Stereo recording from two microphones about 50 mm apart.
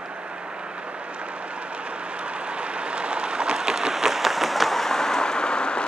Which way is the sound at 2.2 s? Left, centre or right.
Right.